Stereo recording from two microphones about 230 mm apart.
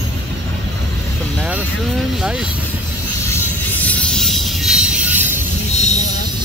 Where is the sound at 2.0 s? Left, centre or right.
Centre.